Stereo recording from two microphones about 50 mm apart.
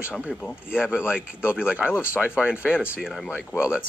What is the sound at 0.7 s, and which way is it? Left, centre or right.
Speech, centre.